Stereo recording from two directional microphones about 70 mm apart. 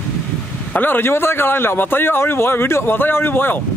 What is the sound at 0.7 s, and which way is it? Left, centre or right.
A man's voice, left.